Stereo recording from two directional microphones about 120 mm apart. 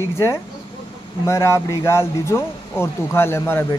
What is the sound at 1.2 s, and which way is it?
Speech, 20° left (ahead or behind).